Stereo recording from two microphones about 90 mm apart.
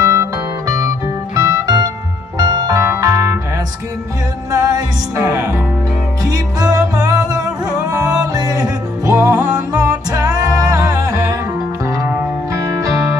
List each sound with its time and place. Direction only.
0.0 s music: 40° right (ahead or behind)
4.5 s music: 40° right (ahead or behind)
6.2 s music: 45° right (ahead or behind)
8.4 s music: 45° right (ahead or behind)